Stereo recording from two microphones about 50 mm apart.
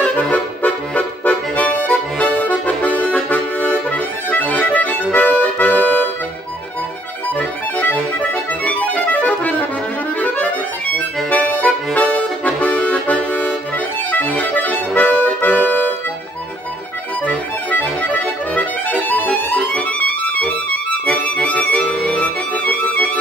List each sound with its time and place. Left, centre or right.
0.0 s accordion: left
7.8 s accordion: left
11.2 s music: left
14.1 s accordion: left
17.3 s accordion: left